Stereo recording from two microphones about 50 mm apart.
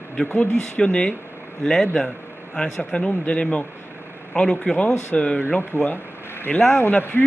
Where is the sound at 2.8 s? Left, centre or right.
Left.